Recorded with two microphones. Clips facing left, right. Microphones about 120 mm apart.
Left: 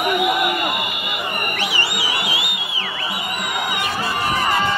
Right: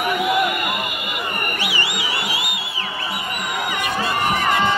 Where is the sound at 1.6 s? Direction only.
15° right (ahead or behind).